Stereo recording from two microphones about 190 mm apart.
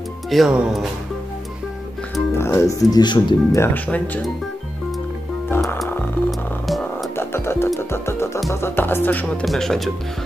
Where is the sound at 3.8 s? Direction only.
5° left (ahead or behind).